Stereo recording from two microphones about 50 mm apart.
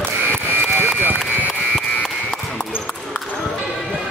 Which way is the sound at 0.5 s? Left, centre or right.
Right.